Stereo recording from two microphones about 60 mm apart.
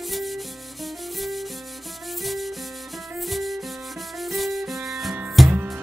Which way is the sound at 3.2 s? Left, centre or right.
Centre.